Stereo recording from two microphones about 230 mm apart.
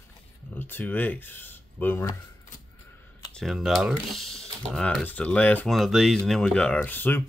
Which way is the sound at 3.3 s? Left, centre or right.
Centre.